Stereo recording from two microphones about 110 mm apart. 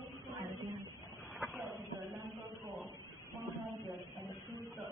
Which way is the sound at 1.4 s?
25° left (ahead or behind).